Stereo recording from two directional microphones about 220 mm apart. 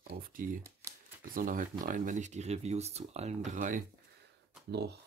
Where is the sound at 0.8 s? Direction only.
15° right (ahead or behind).